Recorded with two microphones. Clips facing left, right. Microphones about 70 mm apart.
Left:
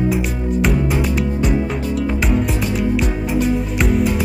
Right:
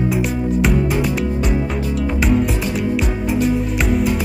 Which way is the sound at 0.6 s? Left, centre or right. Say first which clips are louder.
Left 1 dB; centre.